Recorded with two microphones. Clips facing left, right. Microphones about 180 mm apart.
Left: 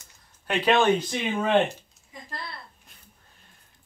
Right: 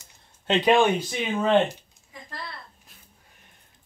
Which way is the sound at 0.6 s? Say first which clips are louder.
Even; 10° right (ahead or behind).